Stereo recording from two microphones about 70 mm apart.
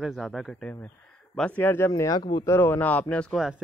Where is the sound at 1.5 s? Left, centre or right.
Left.